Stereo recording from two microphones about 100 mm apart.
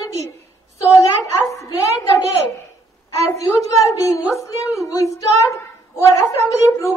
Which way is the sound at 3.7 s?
35° left (ahead or behind).